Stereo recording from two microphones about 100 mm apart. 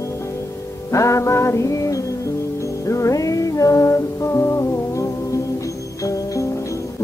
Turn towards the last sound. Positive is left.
turn(degrees=30)  # may be behind; listen again after turning